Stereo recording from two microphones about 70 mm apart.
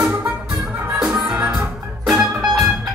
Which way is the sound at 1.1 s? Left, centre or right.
Centre.